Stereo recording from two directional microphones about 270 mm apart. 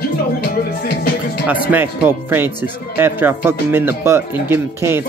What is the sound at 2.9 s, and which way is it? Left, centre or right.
Speech, centre.